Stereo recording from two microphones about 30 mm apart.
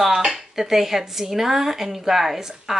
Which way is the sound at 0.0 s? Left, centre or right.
Centre.